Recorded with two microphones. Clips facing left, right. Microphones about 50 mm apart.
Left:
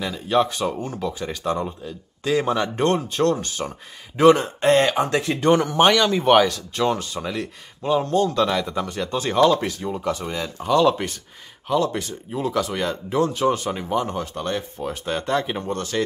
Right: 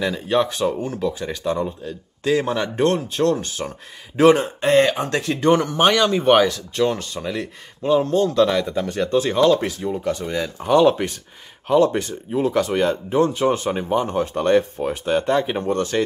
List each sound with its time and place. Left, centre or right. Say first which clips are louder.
0.0 s speech: right 1 dB; centre
4.2 s speech: right 1 dB; centre
10.6 s speech: right 3 dB; centre
12.4 s speech: right 5 dB; centre
14.3 s speech: right 9 dB; right
14.8 s speech: right 5 dB; centre